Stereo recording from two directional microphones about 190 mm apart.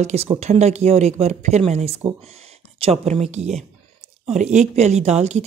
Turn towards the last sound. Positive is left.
turn(degrees=-35)  # may be behind; listen again after turning